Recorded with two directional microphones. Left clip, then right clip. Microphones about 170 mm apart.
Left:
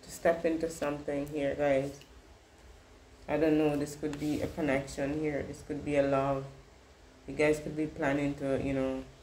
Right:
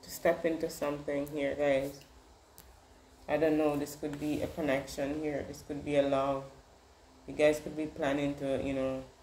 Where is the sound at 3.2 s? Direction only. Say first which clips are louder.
Left 1 dB; 10° right (ahead or behind).